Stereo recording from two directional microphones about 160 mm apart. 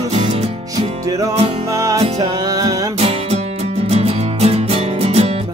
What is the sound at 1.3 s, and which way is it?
Music, 40° right (ahead or behind).